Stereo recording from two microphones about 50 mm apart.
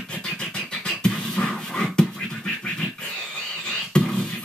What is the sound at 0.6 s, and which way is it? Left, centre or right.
Beatboxing, centre.